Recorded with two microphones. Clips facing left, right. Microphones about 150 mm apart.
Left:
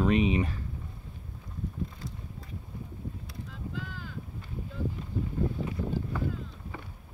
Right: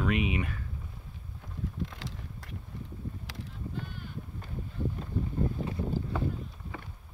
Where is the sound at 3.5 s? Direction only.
90° left.